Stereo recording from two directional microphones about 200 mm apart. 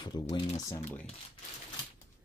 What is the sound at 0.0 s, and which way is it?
Speech, 20° left (ahead or behind).